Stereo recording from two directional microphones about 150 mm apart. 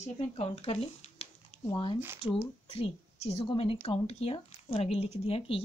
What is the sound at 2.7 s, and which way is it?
A woman's voice, 40° left (ahead or behind).